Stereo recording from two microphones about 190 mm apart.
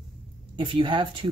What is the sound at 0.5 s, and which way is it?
Speech, 25° right (ahead or behind).